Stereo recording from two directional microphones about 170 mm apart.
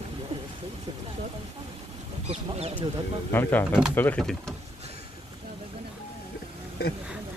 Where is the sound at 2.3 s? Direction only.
35° right (ahead or behind).